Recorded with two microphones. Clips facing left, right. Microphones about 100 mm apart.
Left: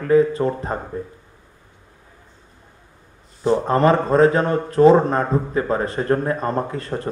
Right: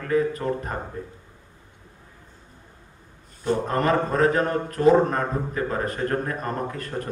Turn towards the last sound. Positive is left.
turn(degrees=25)  # may be behind; listen again after turning